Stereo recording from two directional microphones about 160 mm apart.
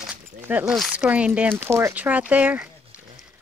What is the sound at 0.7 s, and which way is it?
Speech, 5° right (ahead or behind).